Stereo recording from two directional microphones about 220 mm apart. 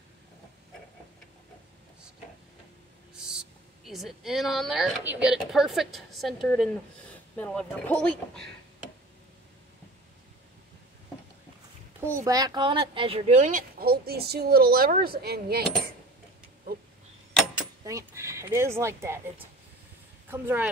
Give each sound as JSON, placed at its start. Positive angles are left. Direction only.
{"t": 3.2, "sound": "speech", "side_deg": -5}
{"t": 12.0, "sound": "speech", "side_deg": -10}
{"t": 17.8, "sound": "speech", "side_deg": -15}